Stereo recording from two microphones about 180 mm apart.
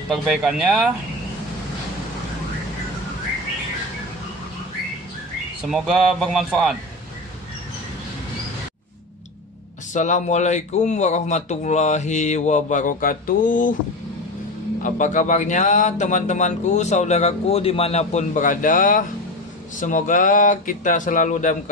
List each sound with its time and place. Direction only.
0.1 s speech: 5° right (ahead or behind)
5.7 s speech: centre (ahead or behind)
9.9 s speech: 40° left (ahead or behind)
14.8 s speech: 45° left (ahead or behind)